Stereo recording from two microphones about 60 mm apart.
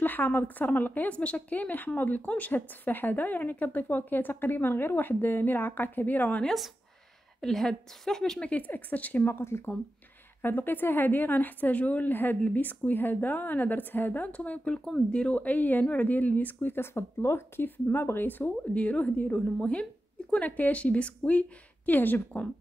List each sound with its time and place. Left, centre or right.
0.0 s a woman's voice: left
6.4 s a woman's voice: centre
8.5 s a woman's voice: left
9.2 s a woman's voice: left
17.6 s speech: left
18.7 s a woman's voice: left